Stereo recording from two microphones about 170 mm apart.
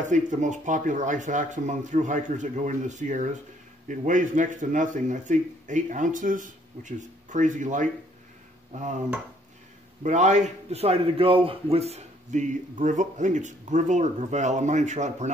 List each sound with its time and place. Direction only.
0.0 s a man's voice: 45° right (ahead or behind)
10.0 s a man's voice: 45° right (ahead or behind)